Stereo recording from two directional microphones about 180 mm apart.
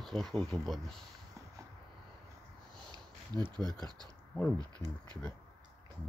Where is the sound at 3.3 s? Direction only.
20° right (ahead or behind).